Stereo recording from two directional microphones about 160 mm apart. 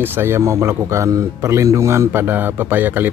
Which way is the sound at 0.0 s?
15° right (ahead or behind).